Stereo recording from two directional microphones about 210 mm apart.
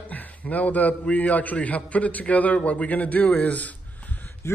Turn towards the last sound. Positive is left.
turn(degrees=10)  # may be behind; listen again after turning